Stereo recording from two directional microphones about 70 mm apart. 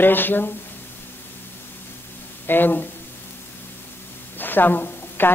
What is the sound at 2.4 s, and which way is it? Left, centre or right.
Speech, left.